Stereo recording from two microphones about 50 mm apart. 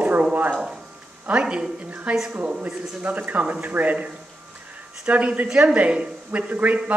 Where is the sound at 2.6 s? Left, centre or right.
Right.